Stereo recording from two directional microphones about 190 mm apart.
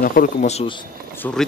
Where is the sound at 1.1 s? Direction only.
10° left (ahead or behind).